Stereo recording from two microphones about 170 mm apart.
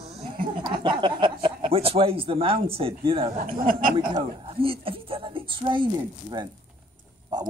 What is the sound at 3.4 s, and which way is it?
Speech, 55° right (ahead or behind).